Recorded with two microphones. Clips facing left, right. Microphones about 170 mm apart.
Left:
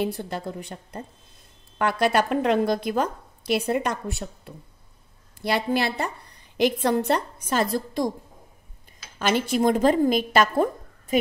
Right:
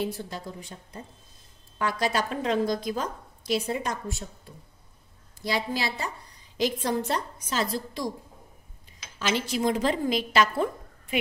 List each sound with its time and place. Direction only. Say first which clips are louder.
0.0 s a woman's voice: left 4 dB; 60° left (ahead or behind)
9.2 s a woman's voice: left 5 dB; 55° left (ahead or behind)